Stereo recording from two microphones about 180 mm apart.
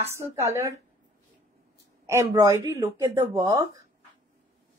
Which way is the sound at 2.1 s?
15° right (ahead or behind).